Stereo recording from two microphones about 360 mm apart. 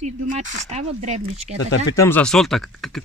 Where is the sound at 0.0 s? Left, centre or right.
Centre.